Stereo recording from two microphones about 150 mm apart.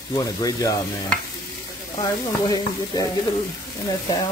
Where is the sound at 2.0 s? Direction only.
25° left (ahead or behind).